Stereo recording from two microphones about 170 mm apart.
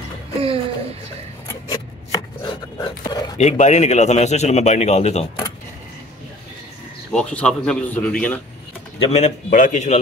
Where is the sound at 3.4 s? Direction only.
40° left (ahead or behind).